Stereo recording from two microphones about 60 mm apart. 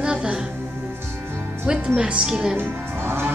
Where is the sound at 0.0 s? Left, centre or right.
Centre.